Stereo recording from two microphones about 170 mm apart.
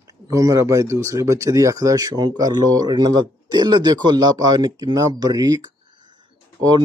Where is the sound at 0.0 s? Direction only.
20° right (ahead or behind).